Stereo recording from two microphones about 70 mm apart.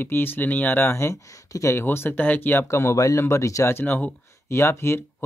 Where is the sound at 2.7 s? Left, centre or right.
Left.